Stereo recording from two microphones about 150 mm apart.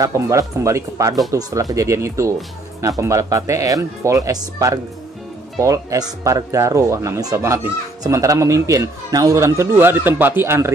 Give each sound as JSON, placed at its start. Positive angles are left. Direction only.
{"t": 0.0, "sound": "speech", "side_deg": -20}